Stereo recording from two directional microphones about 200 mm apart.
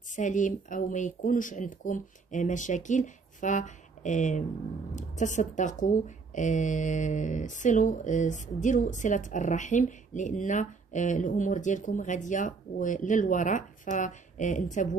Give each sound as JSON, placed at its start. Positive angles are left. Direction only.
{"t": 0.1, "sound": "speech", "side_deg": 40}